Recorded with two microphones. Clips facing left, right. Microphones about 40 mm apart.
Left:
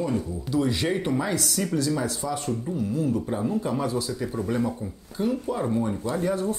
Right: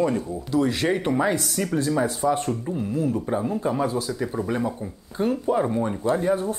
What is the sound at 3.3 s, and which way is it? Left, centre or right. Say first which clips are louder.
Speech: right 2 dB; centre.